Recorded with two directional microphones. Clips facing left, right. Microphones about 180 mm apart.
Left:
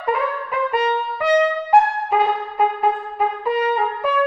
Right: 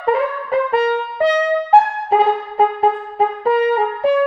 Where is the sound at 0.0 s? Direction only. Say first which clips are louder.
Right 4 dB; 30° right (ahead or behind).